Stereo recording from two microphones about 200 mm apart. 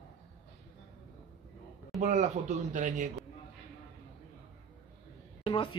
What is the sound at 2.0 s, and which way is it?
Speech, 35° right (ahead or behind).